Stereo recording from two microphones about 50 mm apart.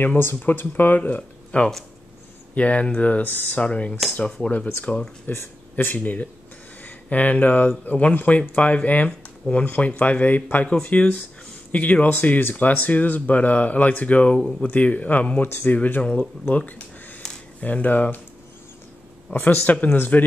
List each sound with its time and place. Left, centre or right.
0.0 s speech: left
5.3 s speech: left
6.8 s speech: left
14.3 s speech: centre
14.7 s speech: left
17.2 s a sound: centre
17.6 s speech: left
19.3 s speech: left